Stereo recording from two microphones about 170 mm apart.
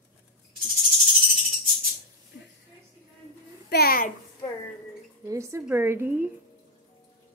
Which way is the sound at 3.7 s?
65° left (ahead or behind).